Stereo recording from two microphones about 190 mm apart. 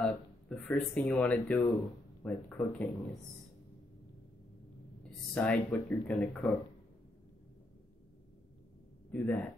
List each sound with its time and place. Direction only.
0.0 s speech: 5° left (ahead or behind)
5.3 s speech: 5° left (ahead or behind)
9.1 s speech: 10° left (ahead or behind)